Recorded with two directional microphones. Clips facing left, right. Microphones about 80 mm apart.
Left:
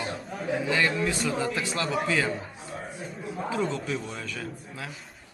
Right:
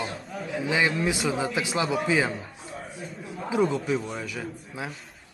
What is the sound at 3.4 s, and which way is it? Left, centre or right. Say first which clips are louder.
A man's voice: right 5 dB; centre.